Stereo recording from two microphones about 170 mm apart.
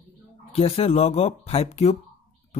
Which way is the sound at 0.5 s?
35° left (ahead or behind).